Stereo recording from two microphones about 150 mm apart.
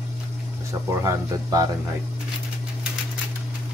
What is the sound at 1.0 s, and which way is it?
Speech, 25° right (ahead or behind).